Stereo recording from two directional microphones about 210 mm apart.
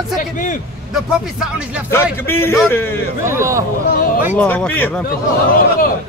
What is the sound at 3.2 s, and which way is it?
Speech, 15° right (ahead or behind).